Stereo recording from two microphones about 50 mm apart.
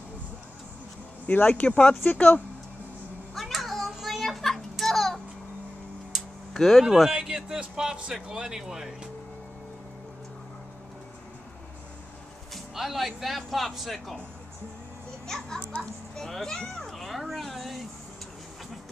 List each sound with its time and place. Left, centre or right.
1.2 s speech: left
3.3 s a sound: centre
6.1 s tick-tock: centre
6.5 s speech: centre
6.8 s speech: centre
7.2 s a sound: centre
8.1 s speech: centre
12.5 s speech: centre
15.2 s a child's voice: centre